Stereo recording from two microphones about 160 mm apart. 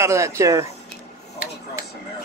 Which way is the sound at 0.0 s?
20° right (ahead or behind).